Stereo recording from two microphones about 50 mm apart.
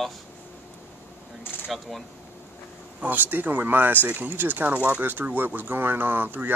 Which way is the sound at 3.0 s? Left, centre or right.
Right.